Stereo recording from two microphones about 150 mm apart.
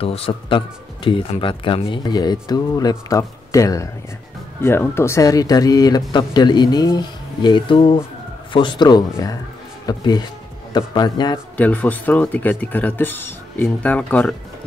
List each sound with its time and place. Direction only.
0.0 s speech: 40° left (ahead or behind)
11.5 s speech: 10° left (ahead or behind)